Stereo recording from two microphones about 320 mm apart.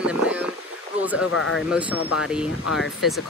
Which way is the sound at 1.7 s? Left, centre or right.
Centre.